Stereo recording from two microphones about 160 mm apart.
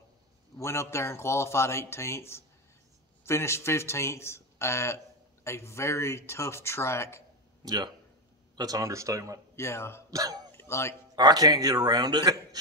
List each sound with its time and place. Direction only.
0.6 s speech: 15° left (ahead or behind)
7.6 s a man's voice: 25° right (ahead or behind)
9.6 s speech: 15° left (ahead or behind)
10.1 s speech: 25° right (ahead or behind)
10.5 s a sound: 15° left (ahead or behind)
11.1 s a man's voice: 25° right (ahead or behind)